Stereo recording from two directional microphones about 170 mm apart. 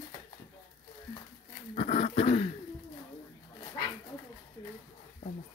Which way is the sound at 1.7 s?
40° left (ahead or behind).